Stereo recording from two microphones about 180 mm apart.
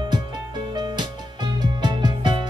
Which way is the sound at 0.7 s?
25° right (ahead or behind).